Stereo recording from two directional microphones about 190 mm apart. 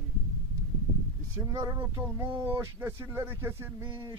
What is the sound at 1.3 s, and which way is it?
Speech, 15° right (ahead or behind).